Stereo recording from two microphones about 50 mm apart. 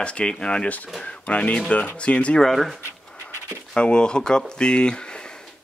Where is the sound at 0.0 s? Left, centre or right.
Centre.